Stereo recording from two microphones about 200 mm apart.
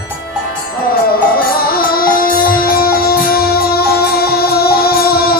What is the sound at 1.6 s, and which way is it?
Music, 50° left (ahead or behind).